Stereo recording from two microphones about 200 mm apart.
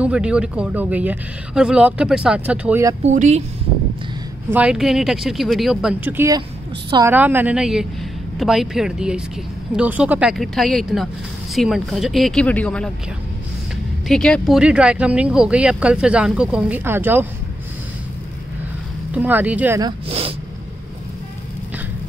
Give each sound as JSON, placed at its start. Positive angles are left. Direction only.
{"t": 0.0, "sound": "speech", "side_deg": -5}
{"t": 3.0, "sound": "speech", "side_deg": -35}
{"t": 4.5, "sound": "a woman's voice", "side_deg": -5}
{"t": 14.0, "sound": "speech", "side_deg": 5}
{"t": 19.1, "sound": "a woman's voice", "side_deg": -10}
{"t": 19.8, "sound": "speech", "side_deg": -30}